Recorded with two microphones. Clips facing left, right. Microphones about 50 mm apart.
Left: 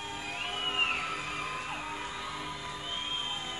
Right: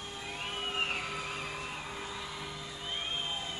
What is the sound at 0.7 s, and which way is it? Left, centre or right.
Music, left.